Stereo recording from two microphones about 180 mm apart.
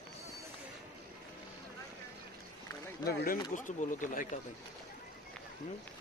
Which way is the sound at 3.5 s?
45° left (ahead or behind).